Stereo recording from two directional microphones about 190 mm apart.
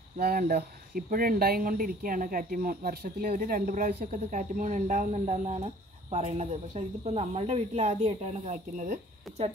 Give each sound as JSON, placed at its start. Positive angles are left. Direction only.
{"t": 0.2, "sound": "speech", "side_deg": -55}